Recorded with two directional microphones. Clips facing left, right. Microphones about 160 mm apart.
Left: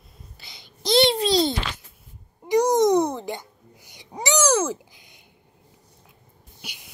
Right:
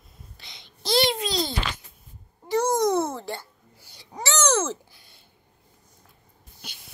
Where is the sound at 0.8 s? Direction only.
20° left (ahead or behind).